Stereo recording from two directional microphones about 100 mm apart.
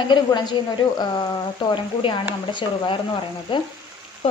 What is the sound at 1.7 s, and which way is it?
Speech, 55° left (ahead or behind).